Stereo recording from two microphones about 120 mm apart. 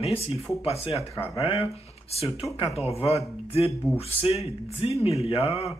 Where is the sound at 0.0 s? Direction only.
55° left (ahead or behind).